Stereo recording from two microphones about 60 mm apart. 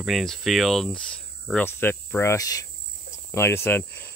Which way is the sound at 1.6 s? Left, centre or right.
Left.